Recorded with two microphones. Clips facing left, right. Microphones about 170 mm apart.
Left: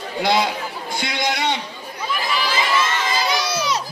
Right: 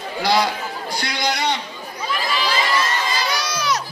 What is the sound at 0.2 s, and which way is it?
A man's voice, 20° left (ahead or behind).